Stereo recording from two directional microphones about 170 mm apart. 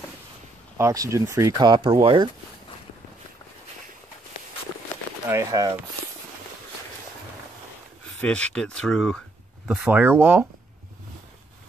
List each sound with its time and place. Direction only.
0.7 s speech: 20° right (ahead or behind)
1.6 s speech: 30° right (ahead or behind)
5.3 s speech: 20° right (ahead or behind)
8.2 s speech: 5° left (ahead or behind)
9.7 s speech: 10° right (ahead or behind)